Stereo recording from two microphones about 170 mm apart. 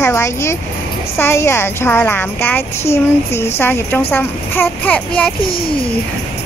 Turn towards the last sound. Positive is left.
turn(degrees=10)  # may be behind; listen again after turning